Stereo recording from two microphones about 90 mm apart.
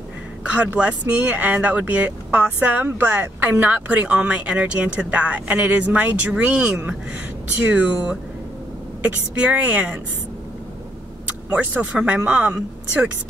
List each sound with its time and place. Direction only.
0.5 s speech: 15° right (ahead or behind)
11.5 s a woman's voice: 15° right (ahead or behind)